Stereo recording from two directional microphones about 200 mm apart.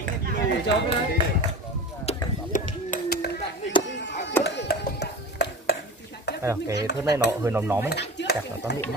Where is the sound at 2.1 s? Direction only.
40° left (ahead or behind).